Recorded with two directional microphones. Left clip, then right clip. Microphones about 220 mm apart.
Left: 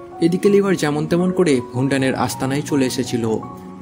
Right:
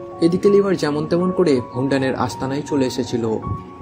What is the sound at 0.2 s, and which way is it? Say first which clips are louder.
Speech: right 1 dB; 25° left (ahead or behind).